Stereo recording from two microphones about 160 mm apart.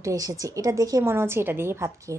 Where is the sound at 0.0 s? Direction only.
20° right (ahead or behind).